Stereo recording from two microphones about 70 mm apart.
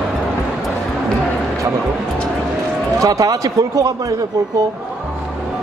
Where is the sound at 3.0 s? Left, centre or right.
Right.